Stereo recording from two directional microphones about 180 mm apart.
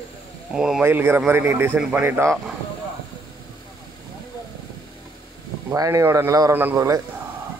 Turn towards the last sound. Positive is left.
turn(degrees=-15)  # may be behind; listen again after turning